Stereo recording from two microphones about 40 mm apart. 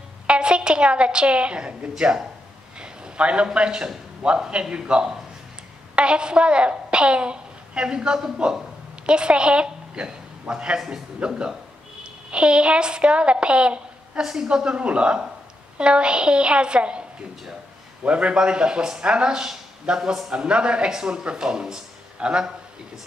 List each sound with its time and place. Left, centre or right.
0.3 s a woman's voice: right
2.8 s a sound: right
3.5 s a woman's voice: right
14.2 s a woman's voice: centre
14.5 s a woman's voice: right
18.0 s a woman's voice: right
20.0 s a woman's voice: centre
20.2 s a woman's voice: right